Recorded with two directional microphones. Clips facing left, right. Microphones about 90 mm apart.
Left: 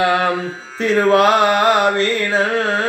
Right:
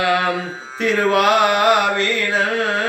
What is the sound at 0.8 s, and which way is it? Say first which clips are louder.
Carnatic music: left 3 dB; 35° left (ahead or behind).